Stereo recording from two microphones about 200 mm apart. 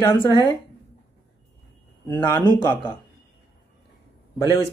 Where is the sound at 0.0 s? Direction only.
20° left (ahead or behind).